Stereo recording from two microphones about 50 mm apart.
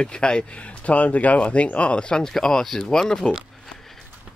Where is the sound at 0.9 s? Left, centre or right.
Left; by 3.2 s centre.